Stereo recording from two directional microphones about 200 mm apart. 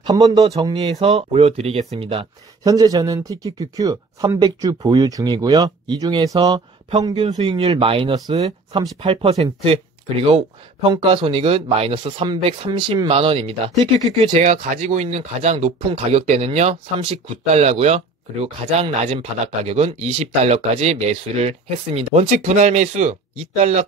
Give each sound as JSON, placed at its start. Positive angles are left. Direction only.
{"t": 0.0, "sound": "speech", "side_deg": -20}